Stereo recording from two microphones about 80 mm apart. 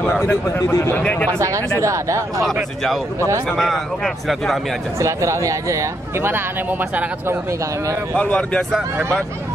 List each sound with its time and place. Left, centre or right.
0.2 s speech: left
1.8 s speech: right
3.4 s a man's voice: centre
4.9 s speech: right
8.2 s speech: centre